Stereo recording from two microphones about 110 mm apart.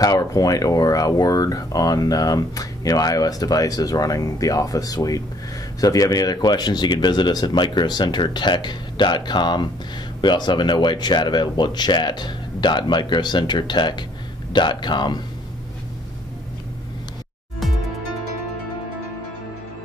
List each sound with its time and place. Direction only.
0.0 s speech: 35° left (ahead or behind)